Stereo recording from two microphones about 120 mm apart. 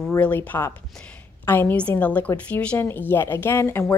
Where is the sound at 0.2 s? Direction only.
15° left (ahead or behind).